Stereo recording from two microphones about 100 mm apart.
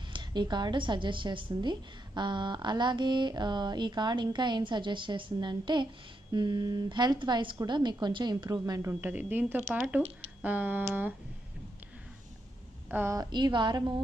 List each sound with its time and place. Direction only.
0.1 s a woman's voice: 50° right (ahead or behind)
9.0 s speech: 20° right (ahead or behind)
12.9 s a woman's voice: 25° right (ahead or behind)
13.2 s a woman's voice: 50° right (ahead or behind)